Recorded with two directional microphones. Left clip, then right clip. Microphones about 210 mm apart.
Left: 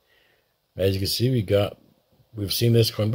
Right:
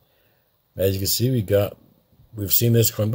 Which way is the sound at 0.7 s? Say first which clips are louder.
Right 1 dB; 5° right (ahead or behind).